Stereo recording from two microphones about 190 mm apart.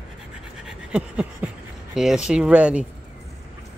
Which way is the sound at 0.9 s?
5° right (ahead or behind).